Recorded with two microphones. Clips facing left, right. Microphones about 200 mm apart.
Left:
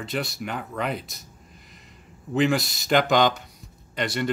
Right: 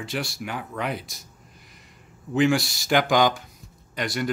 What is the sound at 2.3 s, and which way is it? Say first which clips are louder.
Speech: right 1 dB; centre (ahead or behind).